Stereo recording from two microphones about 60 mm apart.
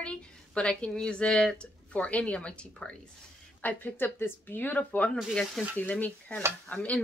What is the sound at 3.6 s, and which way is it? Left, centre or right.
Speech, left.